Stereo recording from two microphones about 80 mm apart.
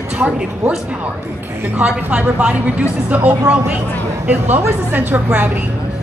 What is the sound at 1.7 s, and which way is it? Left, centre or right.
A woman's voice, centre.